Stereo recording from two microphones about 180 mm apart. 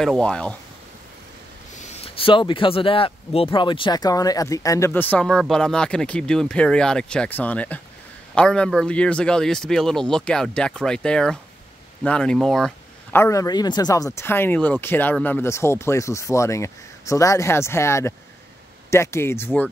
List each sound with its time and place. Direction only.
0.0 s a man's voice: 5° left (ahead or behind)
1.8 s a man's voice: 35° left (ahead or behind); by 12.7 s centre (ahead or behind)
13.1 s speech: 15° left (ahead or behind)